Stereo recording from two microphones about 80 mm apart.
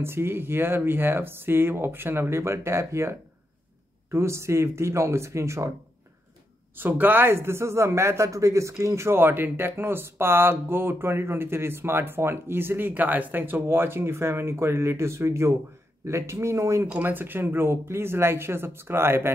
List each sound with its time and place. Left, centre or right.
0.0 s speech: right
6.8 s speech: right
17.0 s speech: right